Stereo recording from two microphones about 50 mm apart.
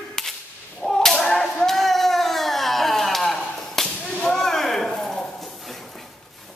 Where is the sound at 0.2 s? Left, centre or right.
Centre.